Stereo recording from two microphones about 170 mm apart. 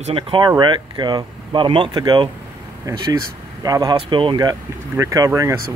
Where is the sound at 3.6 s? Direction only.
20° right (ahead or behind).